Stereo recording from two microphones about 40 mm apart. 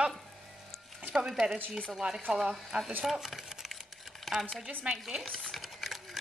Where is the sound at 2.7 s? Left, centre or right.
Right.